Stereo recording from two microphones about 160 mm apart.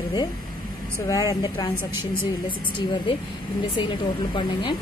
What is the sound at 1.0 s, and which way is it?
Speech, 20° left (ahead or behind).